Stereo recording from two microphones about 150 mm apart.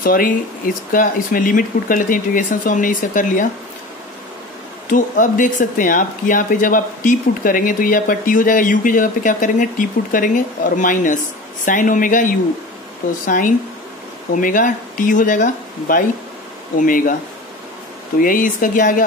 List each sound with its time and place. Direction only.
0.0 s speech: 70° left (ahead or behind)
4.8 s speech: 60° left (ahead or behind)
14.3 s speech: 60° left (ahead or behind)
18.2 s speech: 65° left (ahead or behind)